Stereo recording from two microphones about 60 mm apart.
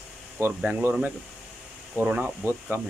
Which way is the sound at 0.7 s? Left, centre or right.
Right.